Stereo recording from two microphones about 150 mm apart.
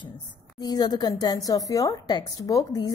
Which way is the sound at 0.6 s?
25° left (ahead or behind).